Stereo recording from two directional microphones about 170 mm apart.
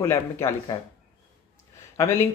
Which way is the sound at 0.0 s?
15° left (ahead or behind).